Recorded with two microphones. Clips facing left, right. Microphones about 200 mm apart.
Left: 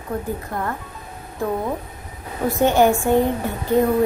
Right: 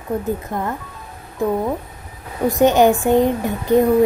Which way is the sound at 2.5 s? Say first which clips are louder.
Right 3 dB; 15° right (ahead or behind).